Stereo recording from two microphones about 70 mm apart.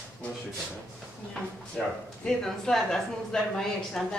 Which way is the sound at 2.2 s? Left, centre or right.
Centre.